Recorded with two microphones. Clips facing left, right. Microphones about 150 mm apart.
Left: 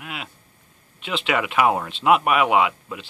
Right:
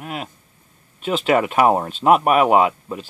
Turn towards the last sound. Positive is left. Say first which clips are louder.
# right 3 dB
turn(degrees=-40)  # may be behind; listen again after turning